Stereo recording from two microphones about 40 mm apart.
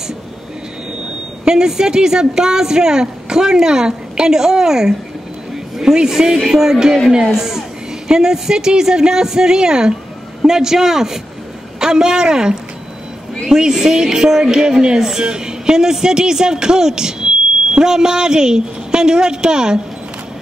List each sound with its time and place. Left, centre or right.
1.4 s speech: centre